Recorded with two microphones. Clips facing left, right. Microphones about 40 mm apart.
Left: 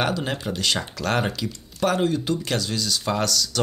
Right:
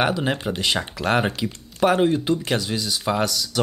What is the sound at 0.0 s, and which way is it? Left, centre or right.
Speech, centre.